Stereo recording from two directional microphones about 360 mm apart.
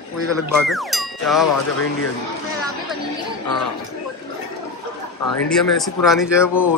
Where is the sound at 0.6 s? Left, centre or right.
Centre.